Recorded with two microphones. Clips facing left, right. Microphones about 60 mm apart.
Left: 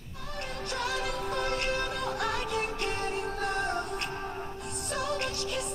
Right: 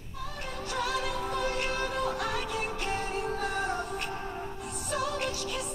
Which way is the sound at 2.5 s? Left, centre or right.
Centre.